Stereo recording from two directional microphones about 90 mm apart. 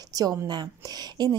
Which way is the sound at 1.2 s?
50° right (ahead or behind).